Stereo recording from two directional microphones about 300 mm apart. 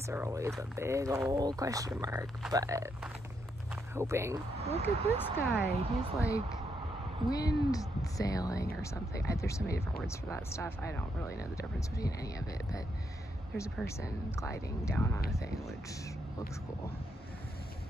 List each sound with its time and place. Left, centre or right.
0.0 s speech: centre
4.6 s speech: centre
5.1 s speech: centre